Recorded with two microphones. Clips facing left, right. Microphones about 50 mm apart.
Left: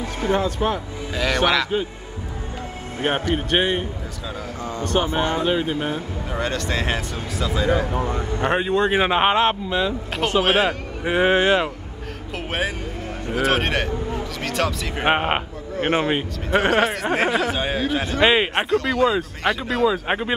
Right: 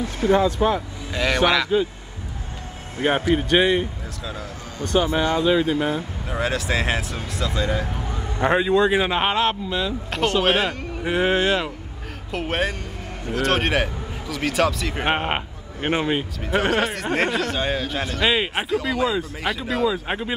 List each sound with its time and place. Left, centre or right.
0.2 s speech: left
0.6 s speech: centre
3.0 s speech: centre
3.4 s speech: left
4.7 s speech: left
5.9 s speech: centre
8.5 s speech: left
10.4 s speech: centre
11.1 s speech: centre
12.3 s speech: centre
15.0 s a man's voice: centre
18.2 s speech: centre
18.5 s speech: centre
19.9 s speech: centre